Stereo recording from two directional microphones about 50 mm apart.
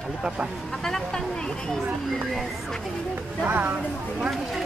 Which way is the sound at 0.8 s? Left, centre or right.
Centre.